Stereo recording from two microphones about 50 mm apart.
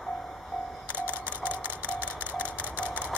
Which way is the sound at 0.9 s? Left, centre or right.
Right.